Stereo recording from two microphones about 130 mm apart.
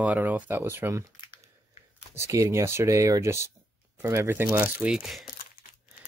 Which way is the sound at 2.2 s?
25° right (ahead or behind).